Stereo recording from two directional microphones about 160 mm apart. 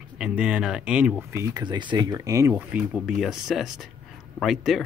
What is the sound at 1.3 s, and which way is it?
Speech, 20° right (ahead or behind).